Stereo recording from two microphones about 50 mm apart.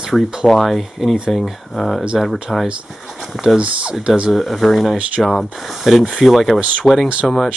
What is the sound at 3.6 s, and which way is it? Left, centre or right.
Speech, right.